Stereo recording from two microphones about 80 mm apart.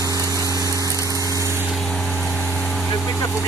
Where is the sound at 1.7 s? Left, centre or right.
Centre.